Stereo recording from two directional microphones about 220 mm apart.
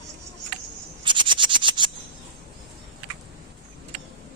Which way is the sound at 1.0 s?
20° right (ahead or behind).